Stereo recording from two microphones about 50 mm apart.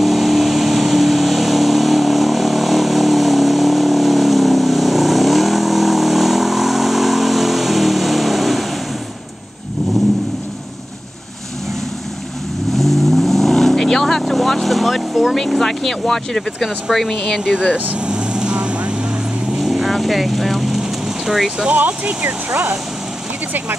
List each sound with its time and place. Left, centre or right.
0.0 s vehicle: centre
12.7 s vehicle: centre
15.6 s speech: centre
17.9 s vehicle: centre
19.6 s vehicle: centre
21.7 s speech: right